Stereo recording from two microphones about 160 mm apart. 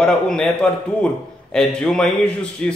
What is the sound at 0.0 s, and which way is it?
Speech, 5° left (ahead or behind).